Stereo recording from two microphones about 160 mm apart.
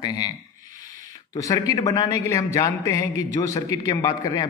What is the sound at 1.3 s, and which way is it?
A man's voice, 20° left (ahead or behind).